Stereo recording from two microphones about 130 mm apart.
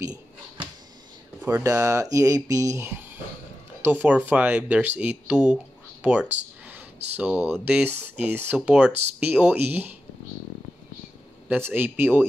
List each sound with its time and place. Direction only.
0.0 s a sound: 30° right (ahead or behind)
1.4 s speech: 20° right (ahead or behind)
6.3 s speech: 60° right (ahead or behind)
7.2 s speech: 15° right (ahead or behind)
11.4 s speech: 15° right (ahead or behind)